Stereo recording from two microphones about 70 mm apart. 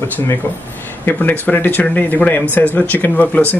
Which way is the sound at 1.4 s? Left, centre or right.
Left.